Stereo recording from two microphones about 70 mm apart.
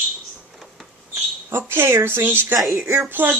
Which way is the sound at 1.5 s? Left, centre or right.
Right.